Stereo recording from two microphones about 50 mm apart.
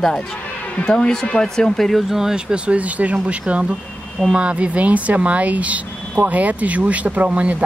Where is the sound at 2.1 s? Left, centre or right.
Centre.